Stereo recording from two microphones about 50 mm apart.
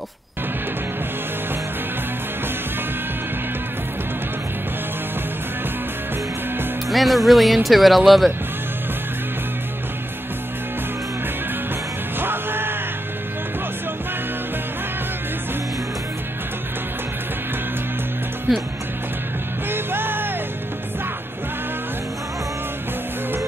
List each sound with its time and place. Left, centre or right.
6.9 s speech: centre
12.2 s music: right
18.5 s music: centre
19.7 s music: right